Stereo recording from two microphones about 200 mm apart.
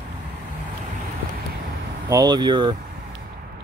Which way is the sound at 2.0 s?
20° right (ahead or behind).